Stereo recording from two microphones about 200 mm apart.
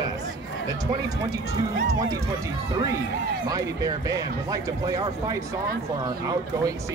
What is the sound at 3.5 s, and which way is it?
Speech, 15° right (ahead or behind).